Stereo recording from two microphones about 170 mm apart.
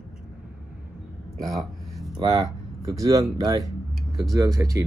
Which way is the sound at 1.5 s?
Centre (ahead or behind).